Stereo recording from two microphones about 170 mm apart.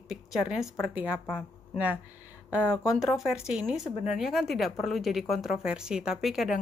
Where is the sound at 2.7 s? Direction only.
5° right (ahead or behind).